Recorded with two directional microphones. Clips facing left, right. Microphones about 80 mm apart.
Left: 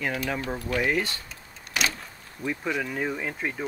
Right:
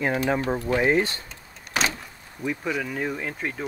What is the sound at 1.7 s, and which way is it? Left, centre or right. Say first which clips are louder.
Vehicle: right 3 dB; right.